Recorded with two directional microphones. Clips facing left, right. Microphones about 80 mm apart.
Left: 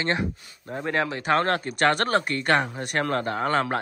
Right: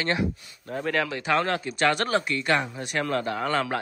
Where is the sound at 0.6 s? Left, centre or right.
Centre.